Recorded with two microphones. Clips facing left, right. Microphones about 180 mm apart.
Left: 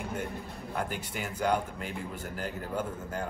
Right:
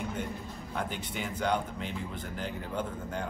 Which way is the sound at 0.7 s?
5° left (ahead or behind).